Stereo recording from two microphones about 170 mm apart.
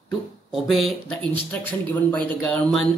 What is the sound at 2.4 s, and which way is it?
Speech, 5° left (ahead or behind).